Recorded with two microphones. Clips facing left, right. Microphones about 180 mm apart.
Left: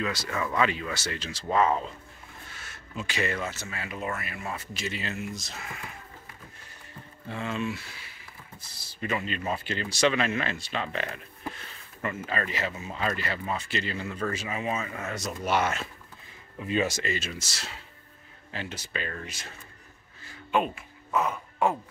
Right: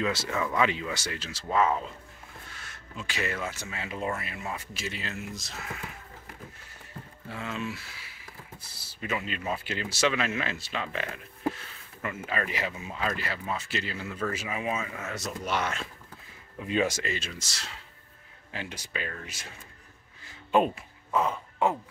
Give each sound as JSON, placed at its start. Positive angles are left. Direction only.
{"t": 0.0, "sound": "speech", "side_deg": -25}
{"t": 0.3, "sound": "speech", "side_deg": 0}
{"t": 0.6, "sound": "speech", "side_deg": -15}
{"t": 4.5, "sound": "speech", "side_deg": -5}
{"t": 7.2, "sound": "speech", "side_deg": -5}
{"t": 16.6, "sound": "speech", "side_deg": -10}
{"t": 17.0, "sound": "speech", "side_deg": 5}
{"t": 18.5, "sound": "speech", "side_deg": -10}
{"t": 20.5, "sound": "speech", "side_deg": -35}